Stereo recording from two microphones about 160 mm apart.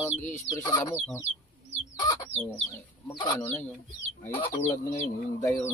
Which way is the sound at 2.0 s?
25° left (ahead or behind).